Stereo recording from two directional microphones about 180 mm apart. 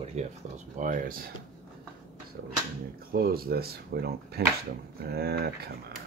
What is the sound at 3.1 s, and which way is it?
Speech, 55° right (ahead or behind).